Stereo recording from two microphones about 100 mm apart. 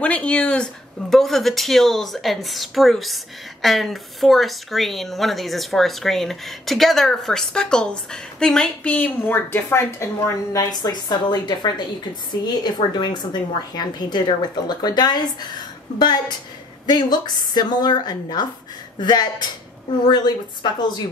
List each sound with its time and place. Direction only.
0.0 s speech: 10° left (ahead or behind); by 21.0 s 45° left (ahead or behind)